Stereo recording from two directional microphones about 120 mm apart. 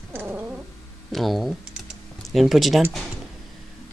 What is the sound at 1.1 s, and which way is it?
Computer keyboard, centre (ahead or behind).